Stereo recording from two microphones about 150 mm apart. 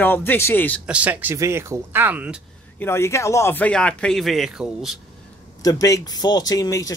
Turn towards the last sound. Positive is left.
turn(degrees=20)  # may be behind; listen again after turning